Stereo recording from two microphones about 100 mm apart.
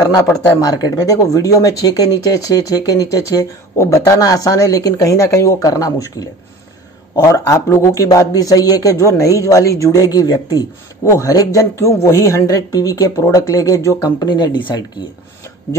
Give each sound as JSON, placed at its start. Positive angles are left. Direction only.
{"t": 0.2, "sound": "speech", "side_deg": 35}
{"t": 7.2, "sound": "speech", "side_deg": 35}
{"t": 14.2, "sound": "speech", "side_deg": 45}